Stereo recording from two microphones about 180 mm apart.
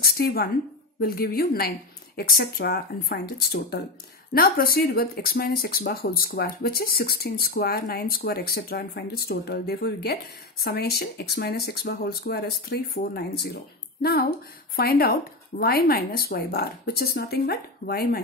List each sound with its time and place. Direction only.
0.0 s a woman's voice: 60° left (ahead or behind)